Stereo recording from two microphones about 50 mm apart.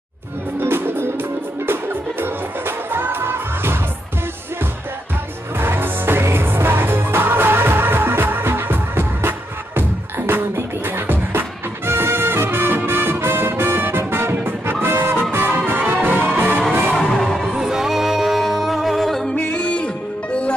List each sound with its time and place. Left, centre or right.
0.6 s music: right
5.6 s music: right
14.3 s music: right
17.1 s music: centre
17.6 s music: centre
19.3 s music: left